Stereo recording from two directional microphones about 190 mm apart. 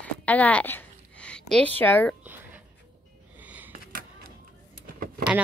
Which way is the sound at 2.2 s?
10° right (ahead or behind).